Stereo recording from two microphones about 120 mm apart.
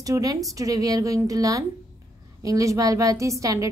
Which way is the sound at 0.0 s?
30° right (ahead or behind).